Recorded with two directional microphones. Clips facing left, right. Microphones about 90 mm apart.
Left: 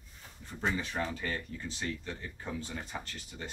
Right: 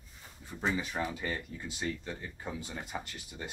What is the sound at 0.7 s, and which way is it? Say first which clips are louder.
Speech: even; 10° right (ahead or behind).